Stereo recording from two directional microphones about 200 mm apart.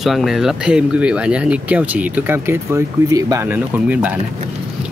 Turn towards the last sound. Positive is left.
turn(degrees=-10)  # may be behind; listen again after turning